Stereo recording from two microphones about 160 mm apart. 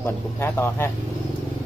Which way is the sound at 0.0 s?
15° left (ahead or behind).